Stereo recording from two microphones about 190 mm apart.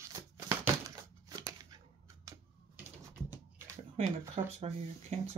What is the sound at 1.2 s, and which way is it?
Scissors, 20° right (ahead or behind).